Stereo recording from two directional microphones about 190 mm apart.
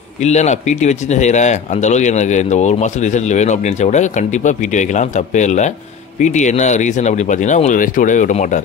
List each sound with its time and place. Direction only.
0.2 s speech: 35° left (ahead or behind)